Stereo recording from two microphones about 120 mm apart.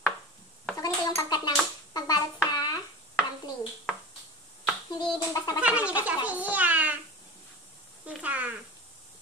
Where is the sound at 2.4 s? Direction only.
35° left (ahead or behind).